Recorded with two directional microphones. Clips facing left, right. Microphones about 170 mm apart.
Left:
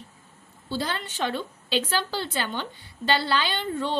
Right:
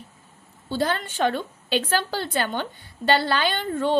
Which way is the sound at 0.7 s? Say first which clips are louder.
Right 5 dB; 50° right (ahead or behind).